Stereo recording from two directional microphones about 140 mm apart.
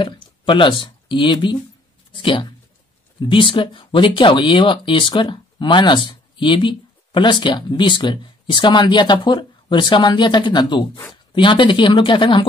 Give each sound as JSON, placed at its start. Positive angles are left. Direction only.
{"t": 0.0, "sound": "speech", "side_deg": 35}
{"t": 3.2, "sound": "speech", "side_deg": 35}